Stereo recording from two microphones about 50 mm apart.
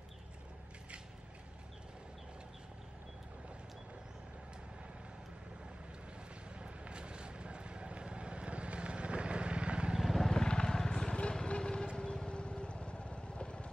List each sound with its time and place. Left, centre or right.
6.6 s vehicle: centre
10.0 s vehicle: centre
10.3 s vehicle: centre